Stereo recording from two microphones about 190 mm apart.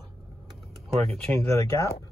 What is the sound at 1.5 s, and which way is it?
Speech, 15° left (ahead or behind).